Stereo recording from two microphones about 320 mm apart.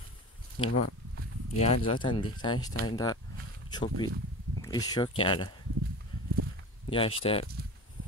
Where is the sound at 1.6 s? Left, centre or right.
Centre.